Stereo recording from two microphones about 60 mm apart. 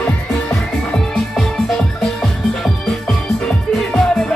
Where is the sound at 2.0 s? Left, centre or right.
Centre.